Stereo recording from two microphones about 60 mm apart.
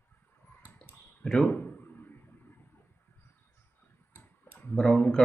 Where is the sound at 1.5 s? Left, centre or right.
Left.